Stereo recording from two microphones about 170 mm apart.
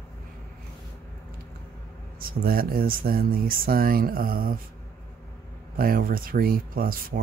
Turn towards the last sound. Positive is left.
turn(degrees=-60)  # may be behind; listen again after turning